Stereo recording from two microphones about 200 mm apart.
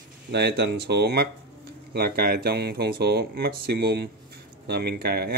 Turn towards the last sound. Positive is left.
turn(degrees=-50)  # may be behind; listen again after turning